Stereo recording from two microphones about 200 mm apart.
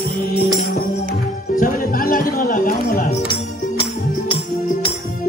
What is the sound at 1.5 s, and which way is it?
Music, 45° left (ahead or behind).